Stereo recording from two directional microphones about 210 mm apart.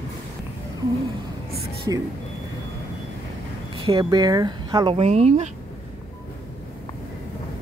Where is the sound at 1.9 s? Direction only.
20° right (ahead or behind).